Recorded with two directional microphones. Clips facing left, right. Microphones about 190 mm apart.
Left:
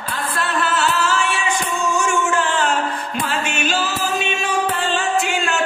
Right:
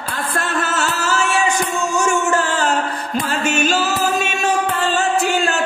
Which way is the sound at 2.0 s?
40° right (ahead or behind).